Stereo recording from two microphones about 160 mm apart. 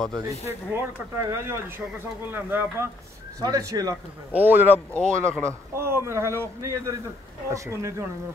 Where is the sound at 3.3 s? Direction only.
25° right (ahead or behind).